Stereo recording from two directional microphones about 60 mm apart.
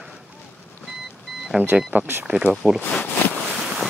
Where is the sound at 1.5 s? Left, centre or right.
Centre.